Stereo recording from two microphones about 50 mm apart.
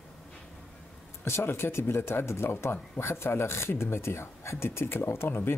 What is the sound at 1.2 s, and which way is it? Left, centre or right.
Speech, left.